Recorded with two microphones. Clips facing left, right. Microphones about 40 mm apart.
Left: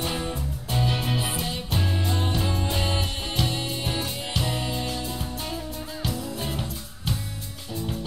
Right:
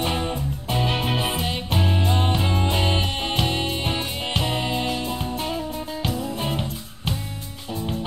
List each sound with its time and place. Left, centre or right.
0.0 s music: right